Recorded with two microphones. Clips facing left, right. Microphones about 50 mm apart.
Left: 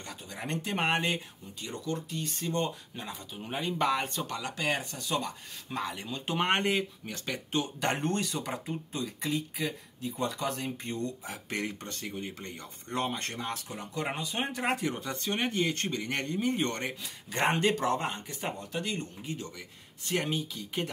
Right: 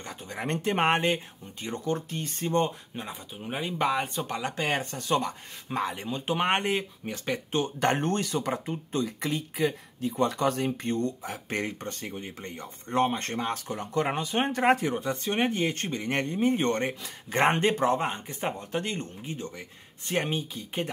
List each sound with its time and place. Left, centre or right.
0.0 s speech: right
3.1 s speech: centre
4.3 s speech: right
11.2 s speech: right